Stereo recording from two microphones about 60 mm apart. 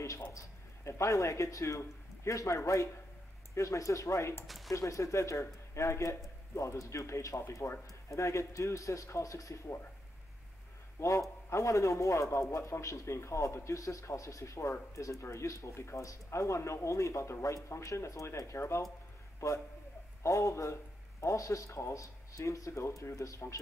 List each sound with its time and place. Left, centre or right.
0.8 s a man's voice: left
4.5 s a sound: centre
4.7 s a man's voice: left
11.0 s a man's voice: left
13.7 s a man's voice: left
20.2 s a man's voice: left